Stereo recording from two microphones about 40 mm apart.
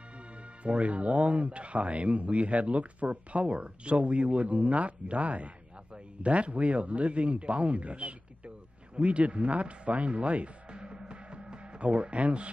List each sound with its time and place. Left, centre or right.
0.7 s speech: right